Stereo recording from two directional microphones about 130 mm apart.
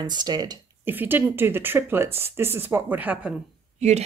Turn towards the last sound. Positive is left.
turn(degrees=-60)  # may be behind; listen again after turning